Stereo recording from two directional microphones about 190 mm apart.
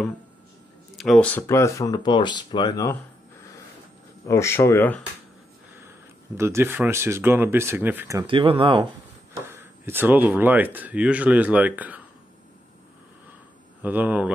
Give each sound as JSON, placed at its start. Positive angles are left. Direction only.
{"t": 0.9, "sound": "speech", "side_deg": 0}
{"t": 4.3, "sound": "speech", "side_deg": 15}
{"t": 5.9, "sound": "speech", "side_deg": -15}
{"t": 8.3, "sound": "speech", "side_deg": -25}
{"t": 9.5, "sound": "speech", "side_deg": -10}
{"t": 13.8, "sound": "speech", "side_deg": -10}